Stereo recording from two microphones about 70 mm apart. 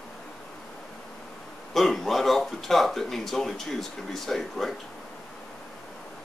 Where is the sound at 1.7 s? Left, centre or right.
Centre.